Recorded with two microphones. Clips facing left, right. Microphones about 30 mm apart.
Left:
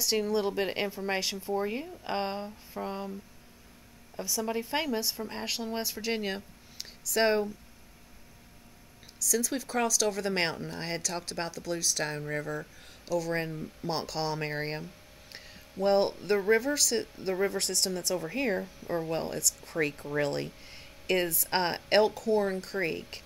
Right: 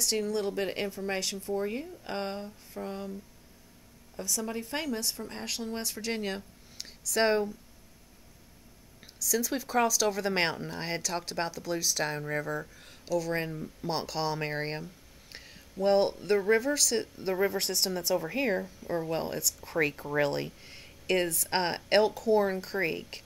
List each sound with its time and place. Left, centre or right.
0.0 s speech: centre
4.2 s speech: centre
9.0 s speech: centre
18.6 s speech: centre